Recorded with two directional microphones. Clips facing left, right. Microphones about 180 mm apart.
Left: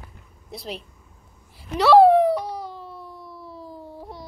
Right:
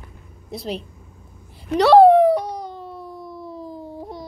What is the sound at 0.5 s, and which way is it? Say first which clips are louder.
Speech: right 6 dB; centre (ahead or behind).